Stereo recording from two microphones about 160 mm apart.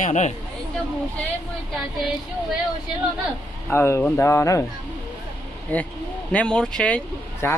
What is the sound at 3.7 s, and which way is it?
Speech, 15° left (ahead or behind).